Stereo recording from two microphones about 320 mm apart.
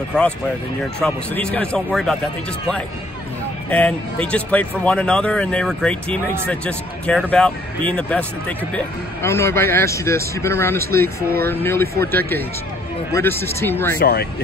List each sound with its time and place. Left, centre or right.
0.9 s speech: centre
3.7 s a man's voice: centre
13.9 s speech: left